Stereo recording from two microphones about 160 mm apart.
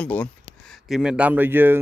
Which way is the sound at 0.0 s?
10° left (ahead or behind).